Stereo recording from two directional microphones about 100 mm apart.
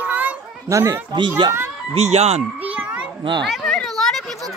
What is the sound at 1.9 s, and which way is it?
Speech, 90° right.